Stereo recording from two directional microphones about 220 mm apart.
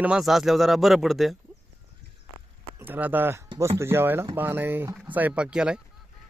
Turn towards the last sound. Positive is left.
turn(degrees=-5)  # may be behind; listen again after turning